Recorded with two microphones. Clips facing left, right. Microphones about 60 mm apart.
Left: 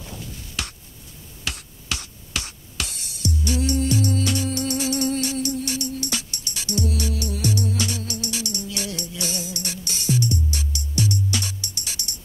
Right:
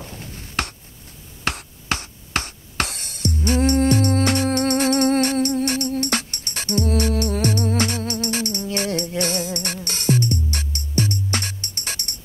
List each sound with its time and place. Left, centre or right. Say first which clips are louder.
0.2 s a sound: right 7 dB; right
1.5 s finger snapping: right 6 dB; right
1.9 s music: right 6 dB; right